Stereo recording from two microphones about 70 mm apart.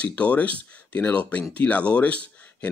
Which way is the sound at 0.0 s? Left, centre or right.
Centre.